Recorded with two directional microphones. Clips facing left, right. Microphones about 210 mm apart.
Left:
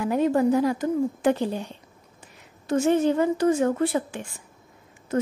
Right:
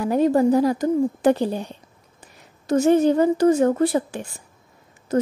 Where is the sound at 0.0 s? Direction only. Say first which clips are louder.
Right 3 dB; 35° right (ahead or behind).